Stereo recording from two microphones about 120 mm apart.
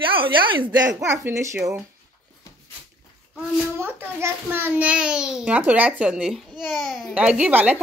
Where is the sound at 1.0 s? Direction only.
25° right (ahead or behind).